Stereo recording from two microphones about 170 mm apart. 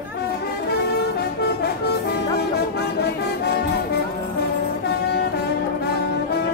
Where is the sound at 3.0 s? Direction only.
75° left (ahead or behind).